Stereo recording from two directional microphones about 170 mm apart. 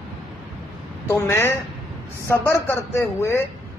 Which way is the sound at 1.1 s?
15° left (ahead or behind).